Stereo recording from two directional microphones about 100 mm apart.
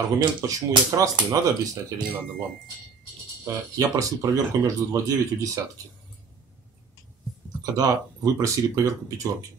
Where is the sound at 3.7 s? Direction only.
35° right (ahead or behind).